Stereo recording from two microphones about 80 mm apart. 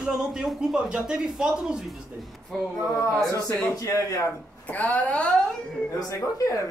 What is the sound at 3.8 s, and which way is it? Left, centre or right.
Speech, left.